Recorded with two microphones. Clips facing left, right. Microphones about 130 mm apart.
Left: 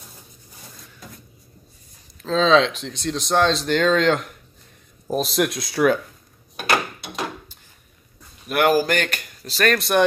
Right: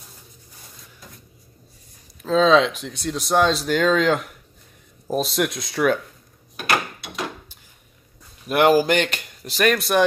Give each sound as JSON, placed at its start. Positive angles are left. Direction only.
{"t": 2.2, "sound": "speech", "side_deg": -10}
{"t": 8.5, "sound": "speech", "side_deg": -25}
{"t": 9.8, "sound": "speech", "side_deg": 0}